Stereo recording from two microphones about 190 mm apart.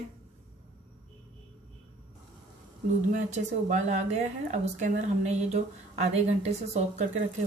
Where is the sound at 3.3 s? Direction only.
40° right (ahead or behind).